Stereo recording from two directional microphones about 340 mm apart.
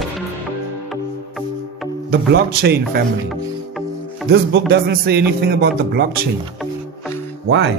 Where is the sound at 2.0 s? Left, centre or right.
Right.